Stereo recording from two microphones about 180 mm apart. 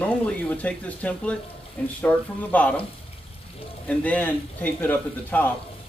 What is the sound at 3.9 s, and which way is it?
A man's voice, 10° left (ahead or behind).